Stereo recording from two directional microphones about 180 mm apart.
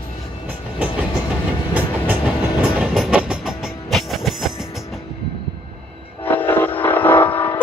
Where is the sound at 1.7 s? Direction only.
10° right (ahead or behind).